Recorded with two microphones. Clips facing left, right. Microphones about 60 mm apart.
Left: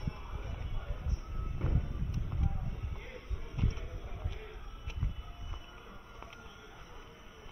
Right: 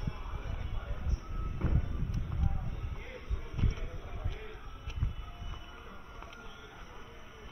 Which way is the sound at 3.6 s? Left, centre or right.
Right.